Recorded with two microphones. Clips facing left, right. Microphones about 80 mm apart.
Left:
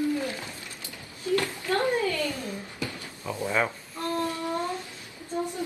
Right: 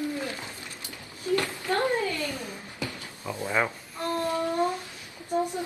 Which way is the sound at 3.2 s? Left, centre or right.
Centre.